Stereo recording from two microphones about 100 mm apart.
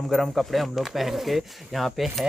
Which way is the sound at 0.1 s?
Centre (ahead or behind).